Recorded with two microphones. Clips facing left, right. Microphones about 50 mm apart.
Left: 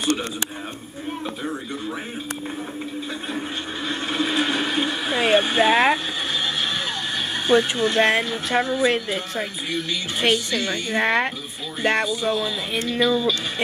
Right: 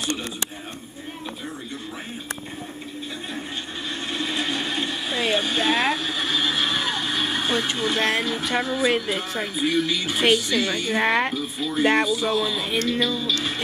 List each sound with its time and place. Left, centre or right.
4.1 s vehicle: left
5.7 s speech: centre
6.3 s a sound: centre
8.0 s speech: centre